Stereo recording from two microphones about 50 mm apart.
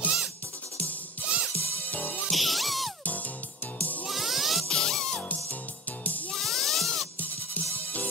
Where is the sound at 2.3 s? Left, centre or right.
Centre.